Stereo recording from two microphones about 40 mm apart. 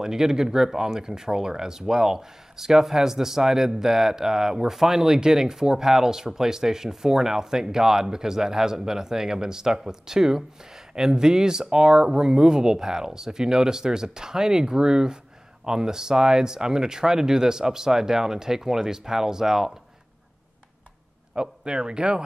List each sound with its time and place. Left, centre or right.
0.0 s speech: centre
21.4 s speech: right